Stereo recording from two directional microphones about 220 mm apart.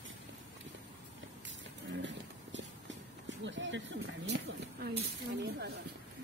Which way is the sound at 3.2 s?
55° right (ahead or behind).